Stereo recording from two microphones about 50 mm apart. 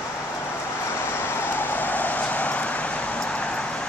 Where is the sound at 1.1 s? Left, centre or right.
Left.